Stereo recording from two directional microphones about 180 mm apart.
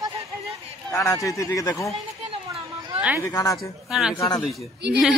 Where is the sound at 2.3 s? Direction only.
30° right (ahead or behind).